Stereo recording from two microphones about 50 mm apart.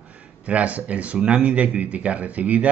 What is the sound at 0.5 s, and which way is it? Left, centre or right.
Speech, right.